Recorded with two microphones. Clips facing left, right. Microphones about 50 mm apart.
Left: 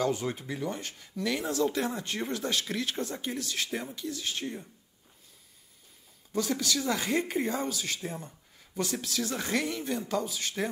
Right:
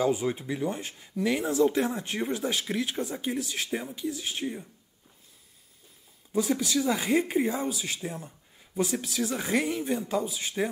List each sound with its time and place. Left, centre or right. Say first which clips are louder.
0.0 s speech: right 3 dB; centre
6.3 s speech: right 4 dB; centre
8.7 s speech: right 3 dB; centre